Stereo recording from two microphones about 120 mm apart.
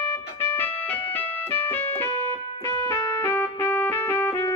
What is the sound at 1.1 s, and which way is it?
Keyboard, 15° left (ahead or behind).